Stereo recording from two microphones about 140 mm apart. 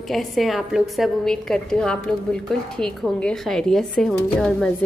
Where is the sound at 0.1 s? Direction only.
Centre (ahead or behind).